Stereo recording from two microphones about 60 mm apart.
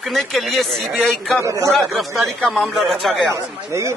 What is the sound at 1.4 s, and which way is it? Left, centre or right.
Speech, right.